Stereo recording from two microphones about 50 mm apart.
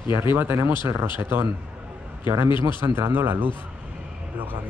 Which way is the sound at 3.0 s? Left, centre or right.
Right.